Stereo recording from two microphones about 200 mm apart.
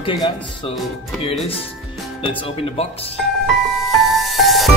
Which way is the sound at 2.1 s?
25° left (ahead or behind).